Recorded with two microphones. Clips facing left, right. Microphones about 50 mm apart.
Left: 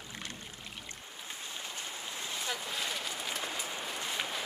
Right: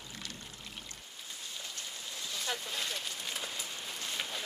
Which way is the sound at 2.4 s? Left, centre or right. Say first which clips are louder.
Even; centre.